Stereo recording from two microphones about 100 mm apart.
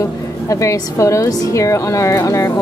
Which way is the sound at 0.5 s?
30° left (ahead or behind).